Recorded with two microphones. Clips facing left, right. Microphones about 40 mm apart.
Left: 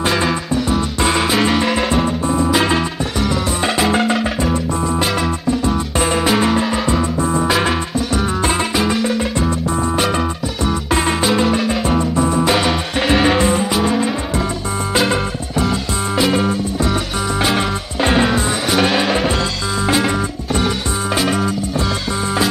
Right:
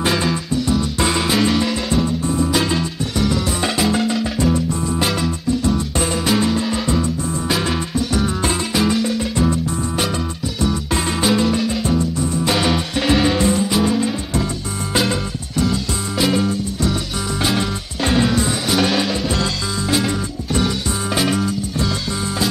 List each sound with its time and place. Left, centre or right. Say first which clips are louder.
0.1 s music: left 2 dB; centre
3.2 s music: even; centre
3.9 s music: left 3 dB; left
6.2 s music: left 1 dB; left
8.7 s music: left 1 dB; centre
11.2 s music: right 1 dB; centre
13.1 s music: left 2 dB; centre
15.6 s music: left 1 dB; centre
21.2 s music: even; centre